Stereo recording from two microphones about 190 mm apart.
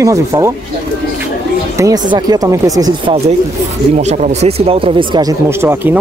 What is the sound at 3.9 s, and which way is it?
Speech, 35° right (ahead or behind).